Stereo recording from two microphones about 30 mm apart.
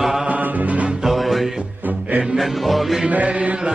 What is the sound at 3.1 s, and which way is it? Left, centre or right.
Mantra, right.